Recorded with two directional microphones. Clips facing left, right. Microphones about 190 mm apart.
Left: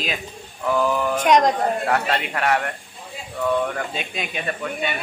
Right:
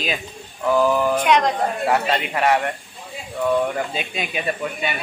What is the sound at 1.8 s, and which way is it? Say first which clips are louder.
Speech: right 2 dB; 5° right (ahead or behind).